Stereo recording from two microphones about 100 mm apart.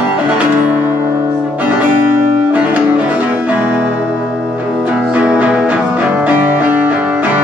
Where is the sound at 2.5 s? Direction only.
15° right (ahead or behind).